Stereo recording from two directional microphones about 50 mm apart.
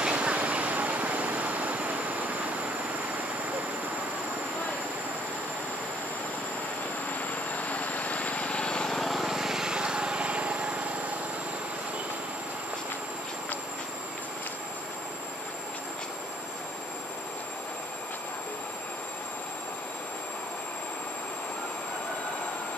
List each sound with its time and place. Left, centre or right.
0.0 s vehicle: right
7.5 s vehicle: left
8.9 s vehicle: centre; by 10.7 s right